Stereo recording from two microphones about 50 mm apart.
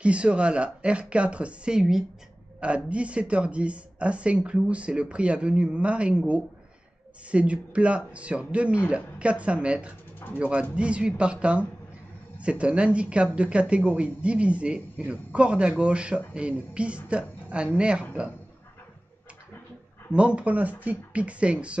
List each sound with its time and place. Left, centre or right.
0.0 s speech: right
2.6 s speech: right
20.1 s speech: right